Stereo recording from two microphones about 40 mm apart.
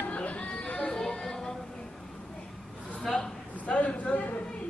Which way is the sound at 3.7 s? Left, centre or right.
Left.